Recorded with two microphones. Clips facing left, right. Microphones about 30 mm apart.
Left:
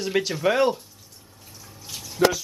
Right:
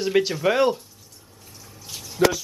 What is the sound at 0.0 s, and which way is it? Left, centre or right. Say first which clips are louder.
Speech: right 2 dB; centre.